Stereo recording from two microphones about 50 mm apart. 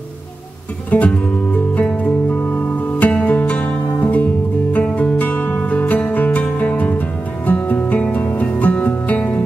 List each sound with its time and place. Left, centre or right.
0.8 s music: left